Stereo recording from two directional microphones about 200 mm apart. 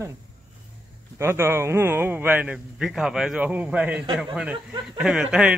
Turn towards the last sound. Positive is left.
turn(degrees=-5)  # may be behind; listen again after turning